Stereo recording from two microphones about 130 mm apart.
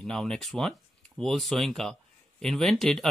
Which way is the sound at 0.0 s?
5° left (ahead or behind).